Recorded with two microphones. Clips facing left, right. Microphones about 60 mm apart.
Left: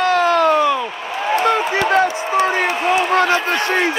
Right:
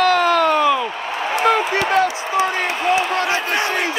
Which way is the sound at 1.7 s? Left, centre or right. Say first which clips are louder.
Left 2 dB; left.